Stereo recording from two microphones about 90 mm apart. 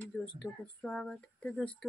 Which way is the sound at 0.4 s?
10° left (ahead or behind).